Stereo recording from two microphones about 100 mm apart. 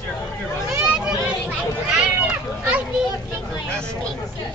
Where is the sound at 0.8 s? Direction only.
10° right (ahead or behind).